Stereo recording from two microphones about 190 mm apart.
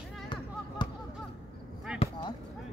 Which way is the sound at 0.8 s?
25° left (ahead or behind).